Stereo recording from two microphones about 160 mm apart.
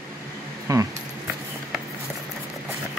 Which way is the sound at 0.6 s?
20° right (ahead or behind).